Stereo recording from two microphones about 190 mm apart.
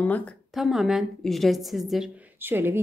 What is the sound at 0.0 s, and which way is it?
A woman's voice, 5° left (ahead or behind).